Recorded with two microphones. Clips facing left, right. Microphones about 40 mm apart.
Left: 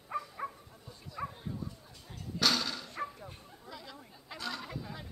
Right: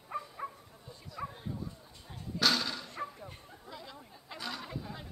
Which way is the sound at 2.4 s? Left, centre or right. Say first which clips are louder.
Right 1 dB; centre.